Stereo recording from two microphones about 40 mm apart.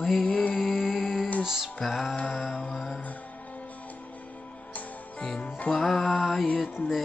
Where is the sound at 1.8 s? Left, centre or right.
Centre.